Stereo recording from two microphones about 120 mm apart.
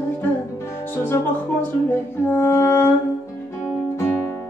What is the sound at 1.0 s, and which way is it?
Music, 20° left (ahead or behind).